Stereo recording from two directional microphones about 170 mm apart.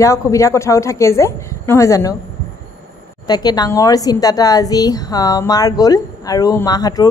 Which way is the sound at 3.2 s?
25° left (ahead or behind).